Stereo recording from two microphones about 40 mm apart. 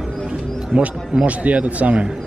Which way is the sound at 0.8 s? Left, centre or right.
Right.